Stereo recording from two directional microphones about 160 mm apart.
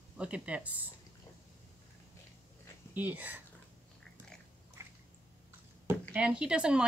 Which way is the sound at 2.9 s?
10° right (ahead or behind).